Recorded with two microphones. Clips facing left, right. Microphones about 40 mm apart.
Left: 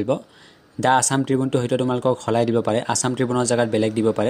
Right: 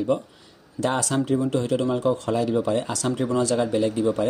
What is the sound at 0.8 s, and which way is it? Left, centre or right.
Speech, left.